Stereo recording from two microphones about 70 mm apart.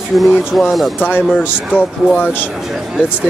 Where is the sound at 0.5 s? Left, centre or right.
Centre.